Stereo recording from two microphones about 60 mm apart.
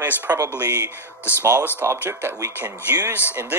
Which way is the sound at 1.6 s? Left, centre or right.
Left.